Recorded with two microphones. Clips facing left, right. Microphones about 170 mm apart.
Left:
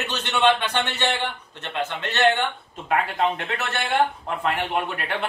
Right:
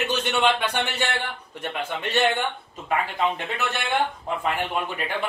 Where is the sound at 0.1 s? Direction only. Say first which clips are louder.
Left 4 dB; 10° right (ahead or behind).